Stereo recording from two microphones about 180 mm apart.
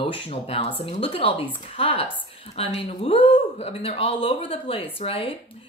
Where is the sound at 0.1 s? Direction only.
35° left (ahead or behind).